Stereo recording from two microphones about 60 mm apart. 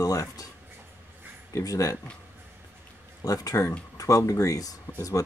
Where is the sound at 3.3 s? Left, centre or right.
Left.